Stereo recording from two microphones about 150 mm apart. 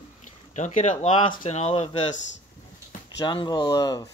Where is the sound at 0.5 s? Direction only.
50° left (ahead or behind).